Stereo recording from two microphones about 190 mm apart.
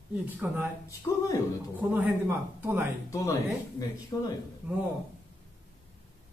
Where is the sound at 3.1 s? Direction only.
15° left (ahead or behind).